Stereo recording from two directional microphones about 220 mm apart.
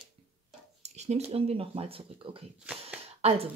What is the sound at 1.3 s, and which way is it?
Speech, 25° right (ahead or behind).